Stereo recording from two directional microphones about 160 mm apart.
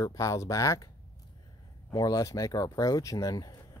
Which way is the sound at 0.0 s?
20° left (ahead or behind).